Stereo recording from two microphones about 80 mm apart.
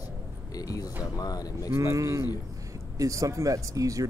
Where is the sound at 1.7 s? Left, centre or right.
Right.